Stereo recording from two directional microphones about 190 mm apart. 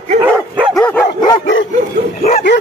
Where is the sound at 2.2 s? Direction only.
60° left (ahead or behind).